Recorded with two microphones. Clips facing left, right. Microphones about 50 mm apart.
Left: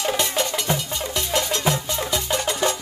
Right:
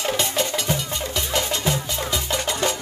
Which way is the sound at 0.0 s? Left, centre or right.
Centre.